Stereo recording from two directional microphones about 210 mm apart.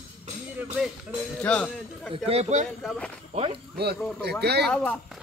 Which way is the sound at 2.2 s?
30° right (ahead or behind).